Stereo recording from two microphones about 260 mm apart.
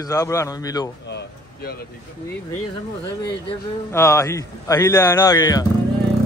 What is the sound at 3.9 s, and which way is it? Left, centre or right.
Speech, centre.